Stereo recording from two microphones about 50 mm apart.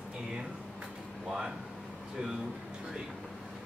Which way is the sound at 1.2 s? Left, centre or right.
Centre.